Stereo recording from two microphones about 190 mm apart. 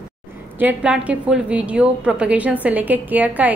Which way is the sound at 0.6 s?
10° right (ahead or behind).